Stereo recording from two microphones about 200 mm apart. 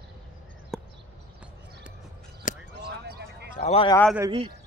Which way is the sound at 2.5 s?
40° left (ahead or behind).